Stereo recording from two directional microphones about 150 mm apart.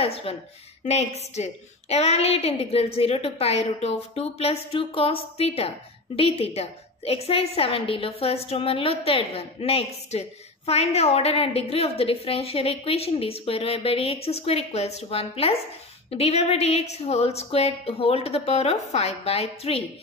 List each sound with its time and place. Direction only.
0.0 s a woman's voice: 40° left (ahead or behind)